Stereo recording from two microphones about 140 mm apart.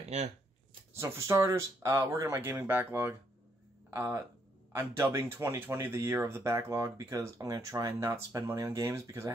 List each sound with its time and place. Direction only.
0.0 s speech: 50° right (ahead or behind)
0.9 s speech: 20° right (ahead or behind)